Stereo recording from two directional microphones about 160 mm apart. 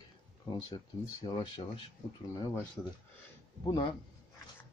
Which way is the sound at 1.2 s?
30° left (ahead or behind).